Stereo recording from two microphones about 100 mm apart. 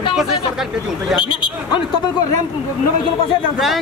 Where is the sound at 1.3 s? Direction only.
55° left (ahead or behind).